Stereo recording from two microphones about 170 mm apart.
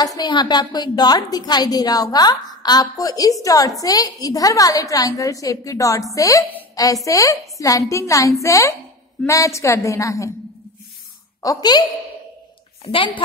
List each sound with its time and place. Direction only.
0.0 s a woman's voice: 25° left (ahead or behind)
11.4 s a woman's voice: 25° left (ahead or behind)